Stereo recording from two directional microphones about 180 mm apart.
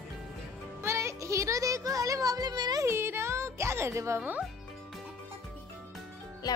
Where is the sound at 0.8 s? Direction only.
15° right (ahead or behind).